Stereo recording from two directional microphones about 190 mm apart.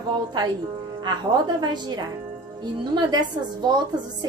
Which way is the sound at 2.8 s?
25° right (ahead or behind).